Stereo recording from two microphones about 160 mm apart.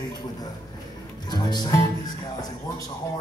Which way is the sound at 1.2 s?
25° left (ahead or behind).